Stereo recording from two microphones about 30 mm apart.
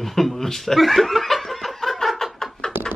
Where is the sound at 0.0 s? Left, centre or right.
Centre.